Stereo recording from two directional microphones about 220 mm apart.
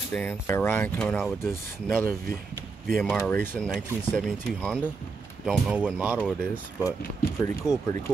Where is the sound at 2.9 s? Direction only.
Centre (ahead or behind).